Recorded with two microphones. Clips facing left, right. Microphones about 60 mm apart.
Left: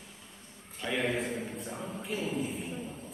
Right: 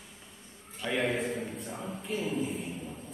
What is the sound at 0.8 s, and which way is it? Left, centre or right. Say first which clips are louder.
A man's voice: right 1 dB; centre.